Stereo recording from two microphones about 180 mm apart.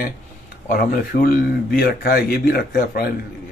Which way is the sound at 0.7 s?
50° left (ahead or behind).